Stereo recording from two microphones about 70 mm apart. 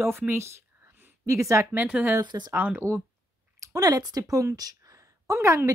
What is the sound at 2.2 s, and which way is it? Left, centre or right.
Speech, right.